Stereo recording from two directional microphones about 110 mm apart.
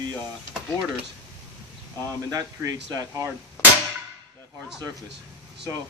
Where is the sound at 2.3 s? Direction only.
35° right (ahead or behind).